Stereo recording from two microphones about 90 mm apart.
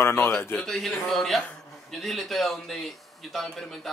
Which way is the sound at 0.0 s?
30° left (ahead or behind).